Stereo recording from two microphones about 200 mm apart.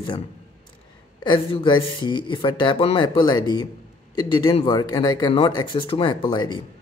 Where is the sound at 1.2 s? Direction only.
25° left (ahead or behind).